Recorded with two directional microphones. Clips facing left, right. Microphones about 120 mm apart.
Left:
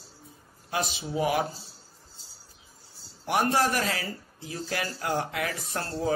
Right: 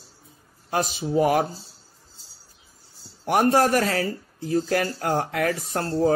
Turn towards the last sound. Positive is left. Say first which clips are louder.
# right 7 dB
turn(degrees=-45)  # may be behind; listen again after turning